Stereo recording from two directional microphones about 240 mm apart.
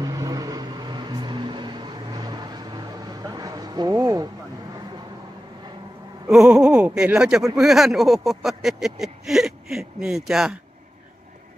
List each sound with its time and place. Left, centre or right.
0.0 s vehicle: centre
6.3 s speech: centre